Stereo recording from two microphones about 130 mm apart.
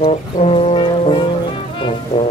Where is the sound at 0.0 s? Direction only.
50° left (ahead or behind).